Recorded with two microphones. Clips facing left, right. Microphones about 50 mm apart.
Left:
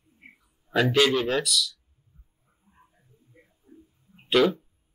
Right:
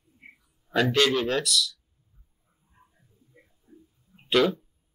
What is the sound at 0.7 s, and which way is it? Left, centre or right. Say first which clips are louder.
Speech: left 1 dB; centre.